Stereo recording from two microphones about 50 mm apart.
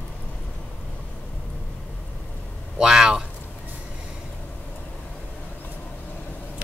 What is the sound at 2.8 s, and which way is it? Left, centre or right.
Speech, centre.